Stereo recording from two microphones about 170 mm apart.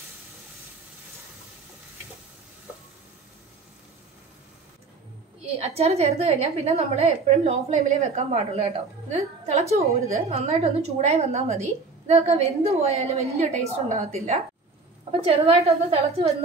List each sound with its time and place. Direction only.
5.6 s a woman's voice: 40° right (ahead or behind)